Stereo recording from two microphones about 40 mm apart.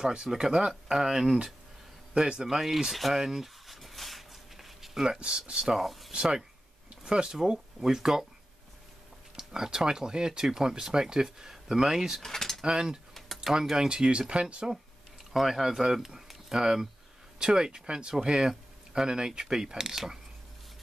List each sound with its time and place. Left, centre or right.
0.0 s speech: centre
2.1 s speech: right
2.4 s a sound: centre
5.0 s speech: centre
5.7 s speech: centre
6.1 s speech: centre
9.4 s speech: centre
12.2 s keys jangling: centre
12.6 s speech: centre
13.1 s typing: centre
13.7 s speech: centre
15.3 s speech: centre